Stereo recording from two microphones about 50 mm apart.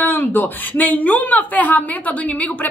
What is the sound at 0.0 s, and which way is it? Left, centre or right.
Speech, left.